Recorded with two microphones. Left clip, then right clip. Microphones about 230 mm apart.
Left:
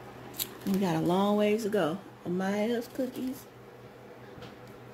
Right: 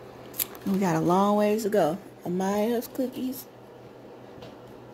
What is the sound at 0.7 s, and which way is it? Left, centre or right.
Speech, right.